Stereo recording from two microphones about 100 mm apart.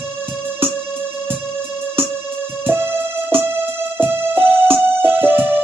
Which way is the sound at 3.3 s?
25° right (ahead or behind).